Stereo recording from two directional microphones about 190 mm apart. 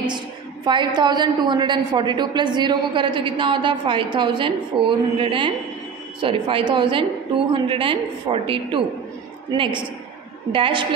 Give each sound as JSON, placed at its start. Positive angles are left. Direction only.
{"t": 0.7, "sound": "a woman's voice", "side_deg": -25}